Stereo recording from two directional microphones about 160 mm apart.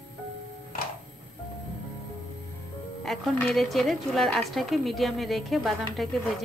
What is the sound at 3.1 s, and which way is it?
A woman's voice, 5° left (ahead or behind).